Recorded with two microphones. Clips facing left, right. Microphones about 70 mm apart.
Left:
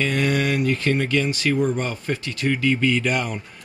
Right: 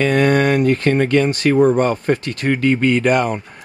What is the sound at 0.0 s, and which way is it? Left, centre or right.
Speech, right.